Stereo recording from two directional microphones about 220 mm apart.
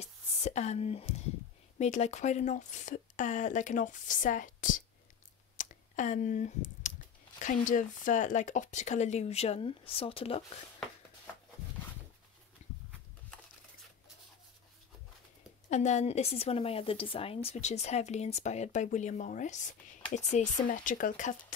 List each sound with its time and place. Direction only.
0.0 s a woman's voice: 30° left (ahead or behind)
5.6 s clicking: 35° left (ahead or behind)
7.3 s a woman's voice: 35° left (ahead or behind)
12.6 s a sound: 30° left (ahead or behind)
15.7 s a woman's voice: 30° left (ahead or behind)